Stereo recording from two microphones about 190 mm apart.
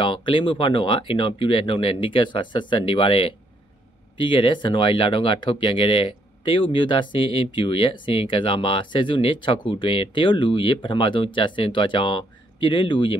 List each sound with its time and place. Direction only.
0.0 s speech: 25° left (ahead or behind)